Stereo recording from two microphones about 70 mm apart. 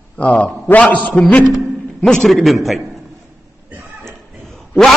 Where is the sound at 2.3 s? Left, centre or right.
Centre.